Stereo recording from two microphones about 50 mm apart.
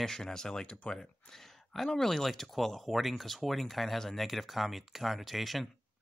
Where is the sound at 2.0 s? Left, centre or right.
Centre.